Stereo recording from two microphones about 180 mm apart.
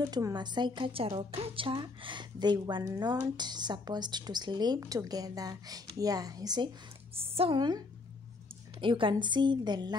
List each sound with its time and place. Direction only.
0.0 s a woman's voice: 25° right (ahead or behind)
8.8 s a woman's voice: 30° right (ahead or behind)